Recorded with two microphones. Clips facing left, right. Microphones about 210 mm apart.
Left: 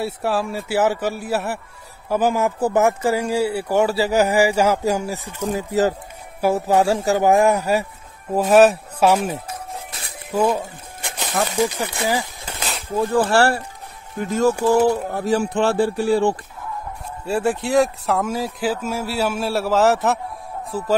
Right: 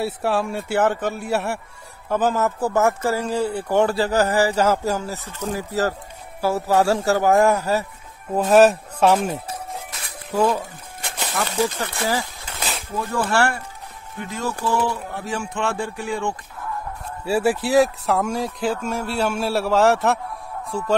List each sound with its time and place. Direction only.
0.0 s a man's voice: centre (ahead or behind)
8.5 s a man's voice: centre (ahead or behind)
10.3 s a sound: 15° left (ahead or behind)
11.3 s speech: 15° left (ahead or behind)
12.9 s speech: 30° left (ahead or behind)
14.2 s speech: 45° left (ahead or behind)
17.2 s a man's voice: 5° right (ahead or behind)